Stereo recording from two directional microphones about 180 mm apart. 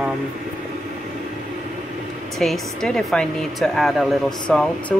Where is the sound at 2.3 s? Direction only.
Centre (ahead or behind).